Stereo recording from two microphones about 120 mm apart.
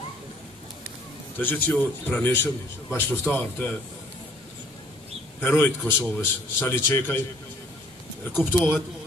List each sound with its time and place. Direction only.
1.4 s a man's voice: 15° left (ahead or behind)
5.4 s a man's voice: 15° left (ahead or behind)
8.5 s speech: 5° right (ahead or behind)